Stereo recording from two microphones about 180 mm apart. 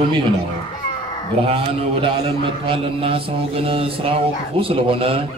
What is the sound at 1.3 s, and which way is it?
A man's voice, 30° right (ahead or behind).